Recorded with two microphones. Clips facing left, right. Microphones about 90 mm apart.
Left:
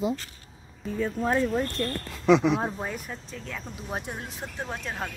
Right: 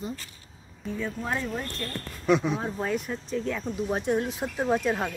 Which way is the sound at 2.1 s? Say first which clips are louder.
Left 3 dB; 90° left.